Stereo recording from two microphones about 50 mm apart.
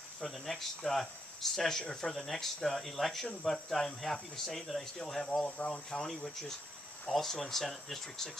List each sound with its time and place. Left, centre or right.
0.2 s speech: centre